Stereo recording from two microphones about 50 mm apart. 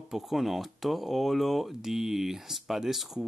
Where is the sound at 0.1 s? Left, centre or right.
Centre.